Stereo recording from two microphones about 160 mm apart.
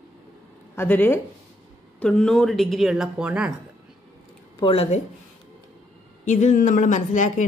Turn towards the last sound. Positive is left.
turn(degrees=50)  # may be behind; listen again after turning